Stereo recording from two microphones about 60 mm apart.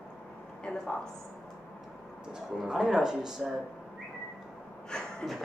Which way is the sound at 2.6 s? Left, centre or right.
Centre.